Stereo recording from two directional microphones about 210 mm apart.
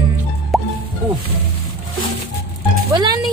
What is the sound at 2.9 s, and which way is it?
Music, 20° right (ahead or behind).